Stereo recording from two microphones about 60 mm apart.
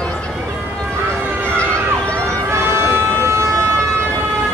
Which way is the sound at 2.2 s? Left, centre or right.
Right.